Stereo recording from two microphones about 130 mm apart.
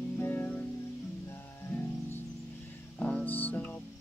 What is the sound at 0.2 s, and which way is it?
Music, 15° left (ahead or behind).